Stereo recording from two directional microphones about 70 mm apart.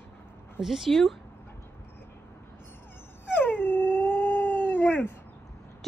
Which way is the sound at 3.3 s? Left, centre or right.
Left.